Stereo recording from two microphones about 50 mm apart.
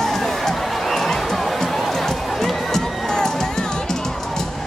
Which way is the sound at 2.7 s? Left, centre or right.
Centre.